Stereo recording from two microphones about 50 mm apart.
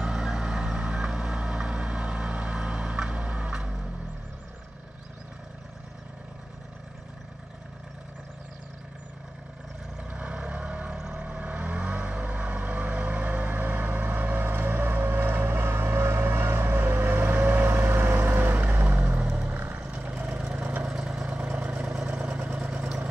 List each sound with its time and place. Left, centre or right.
0.0 s vehicle: centre
10.1 s vehicle: right
19.5 s vehicle: right
19.9 s vehicle: right
20.9 s vehicle: centre